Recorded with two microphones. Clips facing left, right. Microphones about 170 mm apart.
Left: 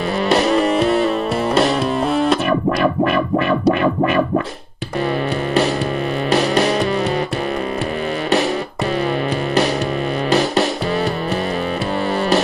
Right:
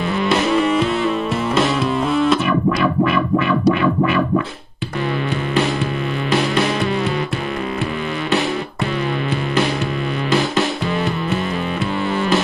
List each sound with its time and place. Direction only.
0.3 s music: 35° left (ahead or behind)
2.8 s music: 45° left (ahead or behind)
6.3 s music: 40° left (ahead or behind)
10.3 s music: 40° left (ahead or behind)